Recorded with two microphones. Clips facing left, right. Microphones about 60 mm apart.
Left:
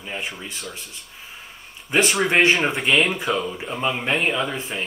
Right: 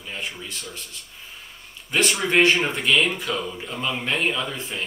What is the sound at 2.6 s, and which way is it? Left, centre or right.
Speech, centre.